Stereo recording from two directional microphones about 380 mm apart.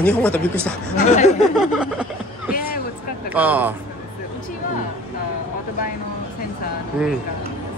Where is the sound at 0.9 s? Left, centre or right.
Centre.